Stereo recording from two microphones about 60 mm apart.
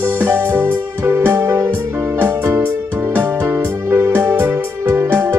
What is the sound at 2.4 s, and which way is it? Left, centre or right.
Music, right.